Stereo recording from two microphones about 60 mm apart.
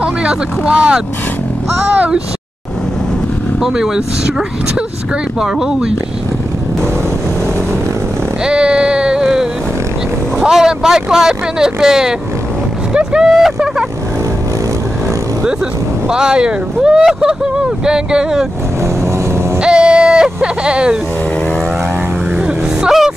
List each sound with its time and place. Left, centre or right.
0.0 s speech: centre
3.6 s speech: centre
5.4 s speech: centre
8.5 s a sound: centre
10.4 s speech: centre
16.1 s speech: centre
19.6 s a sound: centre
20.6 s speech: centre
22.8 s vehicle: centre